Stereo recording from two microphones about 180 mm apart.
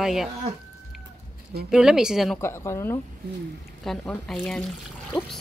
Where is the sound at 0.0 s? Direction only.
Centre (ahead or behind).